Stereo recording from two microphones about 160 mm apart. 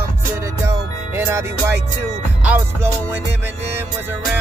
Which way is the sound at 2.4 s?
10° right (ahead or behind).